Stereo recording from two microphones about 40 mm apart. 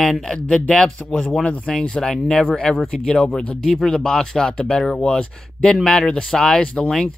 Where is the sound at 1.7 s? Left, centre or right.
Centre.